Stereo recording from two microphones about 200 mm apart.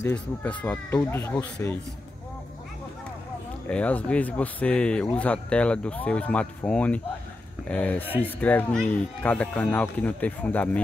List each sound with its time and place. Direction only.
0.0 s speech: 5° left (ahead or behind)
3.6 s speech: 5° left (ahead or behind)